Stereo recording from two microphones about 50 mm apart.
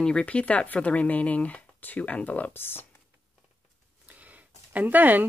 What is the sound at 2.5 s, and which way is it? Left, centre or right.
Speech, left.